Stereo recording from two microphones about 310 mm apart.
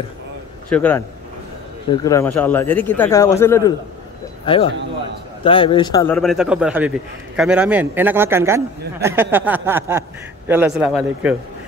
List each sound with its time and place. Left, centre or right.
0.7 s a man's voice: centre